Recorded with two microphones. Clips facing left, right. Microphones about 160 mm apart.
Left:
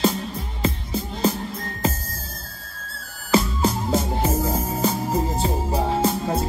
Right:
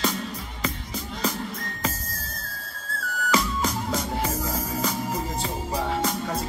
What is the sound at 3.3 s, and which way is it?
Music, 30° left (ahead or behind).